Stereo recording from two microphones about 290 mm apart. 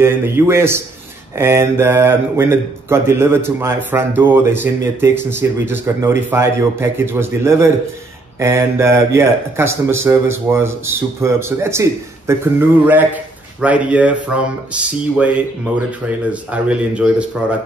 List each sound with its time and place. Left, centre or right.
0.0 s speech: centre